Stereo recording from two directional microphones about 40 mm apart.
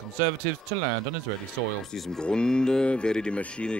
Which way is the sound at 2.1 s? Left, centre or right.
Left.